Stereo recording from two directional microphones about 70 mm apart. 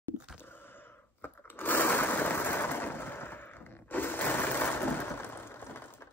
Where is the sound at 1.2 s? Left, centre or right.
Left.